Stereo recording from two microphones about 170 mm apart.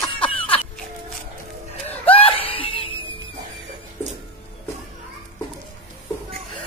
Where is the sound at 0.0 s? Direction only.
30° left (ahead or behind).